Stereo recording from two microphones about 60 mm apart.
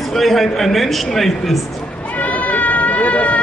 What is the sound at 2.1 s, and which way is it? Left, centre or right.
Run, left.